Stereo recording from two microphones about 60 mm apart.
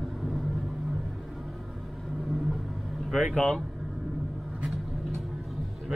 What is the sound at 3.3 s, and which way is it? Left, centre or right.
Speech, centre.